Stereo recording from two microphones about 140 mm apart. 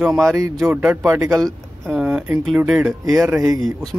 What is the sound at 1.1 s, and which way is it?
Speech, 20° right (ahead or behind).